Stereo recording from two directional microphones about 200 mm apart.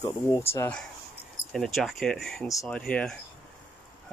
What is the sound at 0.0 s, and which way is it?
Speech, 15° left (ahead or behind).